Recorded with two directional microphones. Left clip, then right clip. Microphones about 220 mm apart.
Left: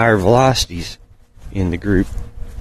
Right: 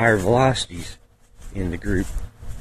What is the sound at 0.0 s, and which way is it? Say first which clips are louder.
Speech: left 5 dB; 25° left (ahead or behind).